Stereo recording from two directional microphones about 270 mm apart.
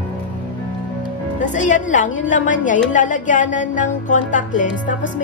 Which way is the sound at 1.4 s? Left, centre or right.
Left.